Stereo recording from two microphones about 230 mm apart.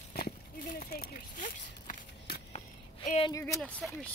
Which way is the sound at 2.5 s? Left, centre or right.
Left.